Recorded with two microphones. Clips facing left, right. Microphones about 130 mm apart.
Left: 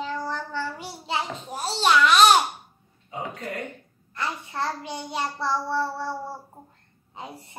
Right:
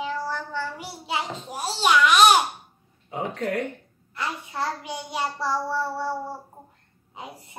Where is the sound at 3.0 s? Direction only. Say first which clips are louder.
Right 5 dB; 70° right (ahead or behind).